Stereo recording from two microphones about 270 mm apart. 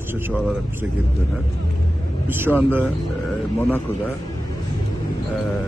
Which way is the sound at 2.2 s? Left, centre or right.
Centre.